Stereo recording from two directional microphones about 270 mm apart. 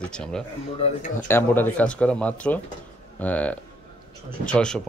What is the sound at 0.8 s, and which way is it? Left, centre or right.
Speech, left.